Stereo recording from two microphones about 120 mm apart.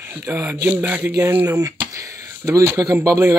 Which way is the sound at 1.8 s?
25° right (ahead or behind).